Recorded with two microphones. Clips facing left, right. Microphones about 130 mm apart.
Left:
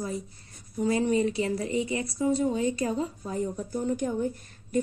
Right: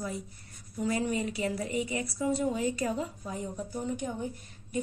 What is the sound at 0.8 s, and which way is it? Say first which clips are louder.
A woman's voice: left 6 dB; 25° left (ahead or behind).